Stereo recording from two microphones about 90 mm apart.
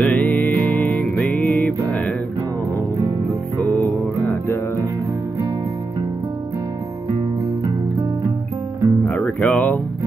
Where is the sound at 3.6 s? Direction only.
20° left (ahead or behind).